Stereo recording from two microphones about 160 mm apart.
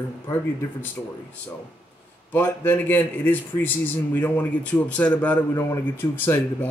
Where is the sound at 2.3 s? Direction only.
10° left (ahead or behind).